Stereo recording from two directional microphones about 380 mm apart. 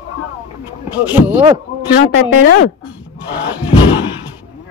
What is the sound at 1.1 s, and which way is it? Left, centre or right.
Speech, centre.